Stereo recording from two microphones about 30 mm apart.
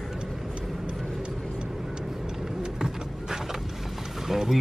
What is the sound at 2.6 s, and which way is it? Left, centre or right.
Vehicle, centre.